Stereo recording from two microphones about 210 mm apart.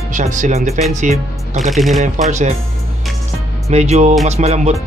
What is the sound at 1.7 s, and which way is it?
Speech, centre (ahead or behind).